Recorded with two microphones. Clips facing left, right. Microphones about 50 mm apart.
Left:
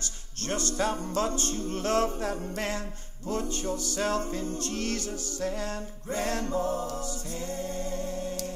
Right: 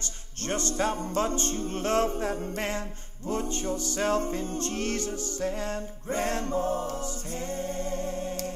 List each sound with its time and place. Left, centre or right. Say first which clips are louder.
0.4 s music: right 1 dB; right